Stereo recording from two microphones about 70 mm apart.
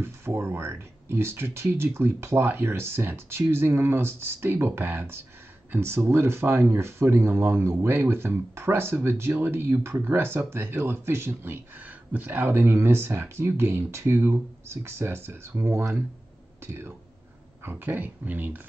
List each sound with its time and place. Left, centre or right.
0.0 s speech: right
17.6 s speech: right